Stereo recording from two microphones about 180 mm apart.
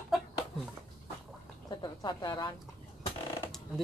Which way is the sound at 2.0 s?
20° left (ahead or behind).